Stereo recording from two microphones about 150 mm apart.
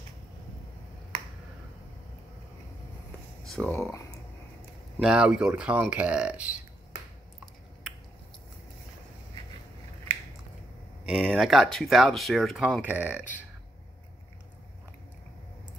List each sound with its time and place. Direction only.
3.4 s speech: 5° left (ahead or behind)
5.0 s speech: 5° right (ahead or behind)
10.1 s biting: 40° right (ahead or behind)
11.1 s speech: centre (ahead or behind)